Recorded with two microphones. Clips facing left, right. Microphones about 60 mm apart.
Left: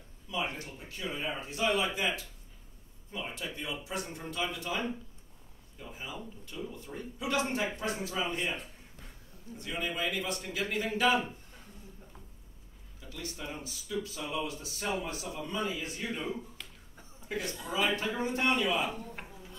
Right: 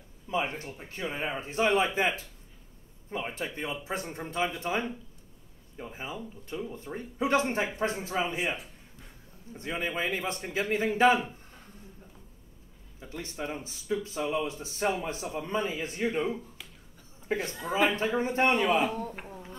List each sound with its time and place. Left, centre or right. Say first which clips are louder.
0.3 s a man's voice: right 4 dB; right
9.5 s a man's voice: right 3 dB; right
13.0 s a man's voice: right 5 dB; right
18.9 s speech: right 6 dB; right